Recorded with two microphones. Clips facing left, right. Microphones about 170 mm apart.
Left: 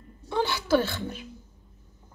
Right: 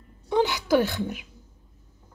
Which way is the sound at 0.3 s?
15° right (ahead or behind).